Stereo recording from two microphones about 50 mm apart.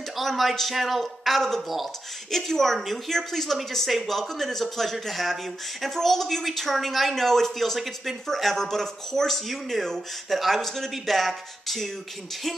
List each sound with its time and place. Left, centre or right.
0.2 s a woman's voice: centre